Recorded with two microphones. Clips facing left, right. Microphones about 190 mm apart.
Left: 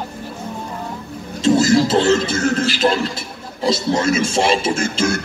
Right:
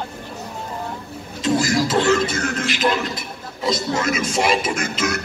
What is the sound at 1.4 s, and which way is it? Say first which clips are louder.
Speech: left 5 dB; 25° left (ahead or behind).